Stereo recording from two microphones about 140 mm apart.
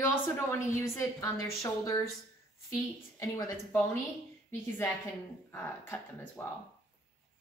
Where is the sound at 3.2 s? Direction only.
20° left (ahead or behind).